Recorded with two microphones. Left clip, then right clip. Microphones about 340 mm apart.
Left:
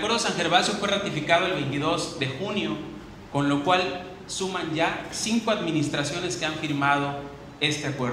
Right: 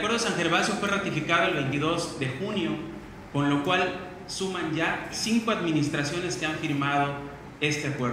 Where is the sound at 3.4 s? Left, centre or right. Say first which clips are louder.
Left 2 dB; left.